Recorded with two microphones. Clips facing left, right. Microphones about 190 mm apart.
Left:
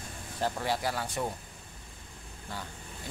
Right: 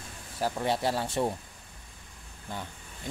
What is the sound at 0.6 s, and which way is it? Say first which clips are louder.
Speech: right 3 dB; 25° right (ahead or behind).